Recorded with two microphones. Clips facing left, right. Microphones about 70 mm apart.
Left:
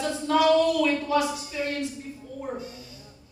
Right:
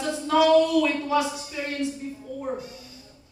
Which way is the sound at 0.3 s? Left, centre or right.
Right.